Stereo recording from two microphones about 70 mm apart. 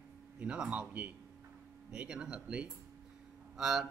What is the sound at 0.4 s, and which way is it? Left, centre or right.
A man's voice, centre.